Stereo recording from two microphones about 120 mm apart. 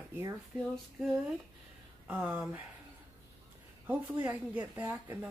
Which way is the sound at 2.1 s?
10° right (ahead or behind).